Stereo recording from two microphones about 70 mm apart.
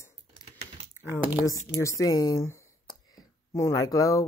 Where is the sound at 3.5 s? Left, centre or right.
Left.